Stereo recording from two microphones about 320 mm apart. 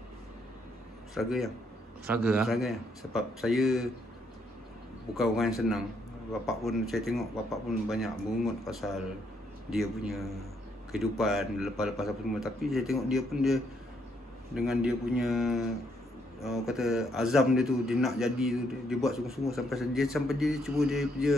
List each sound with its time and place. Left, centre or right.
1.1 s a man's voice: centre
5.1 s a man's voice: centre